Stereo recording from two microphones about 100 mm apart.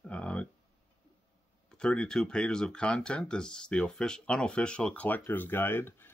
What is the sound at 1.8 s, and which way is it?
Speech, 10° left (ahead or behind).